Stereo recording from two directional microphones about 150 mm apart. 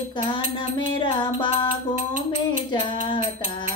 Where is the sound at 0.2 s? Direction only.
35° left (ahead or behind).